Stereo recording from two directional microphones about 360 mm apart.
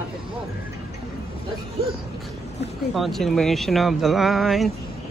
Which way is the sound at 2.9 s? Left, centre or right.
Centre.